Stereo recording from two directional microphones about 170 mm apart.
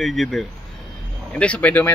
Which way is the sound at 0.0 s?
Centre (ahead or behind).